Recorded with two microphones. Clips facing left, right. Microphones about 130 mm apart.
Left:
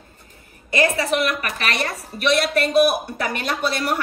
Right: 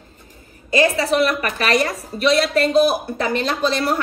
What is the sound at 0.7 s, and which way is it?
A woman's voice, 30° right (ahead or behind).